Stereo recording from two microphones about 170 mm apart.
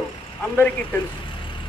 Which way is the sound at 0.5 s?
10° left (ahead or behind).